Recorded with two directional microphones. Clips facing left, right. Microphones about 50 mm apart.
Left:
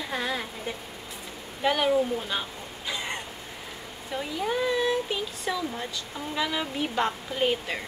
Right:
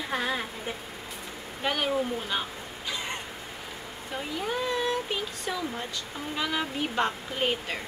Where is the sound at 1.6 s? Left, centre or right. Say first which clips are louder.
Left 4 dB; centre.